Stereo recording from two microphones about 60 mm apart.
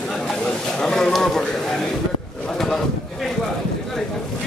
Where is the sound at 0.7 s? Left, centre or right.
Centre.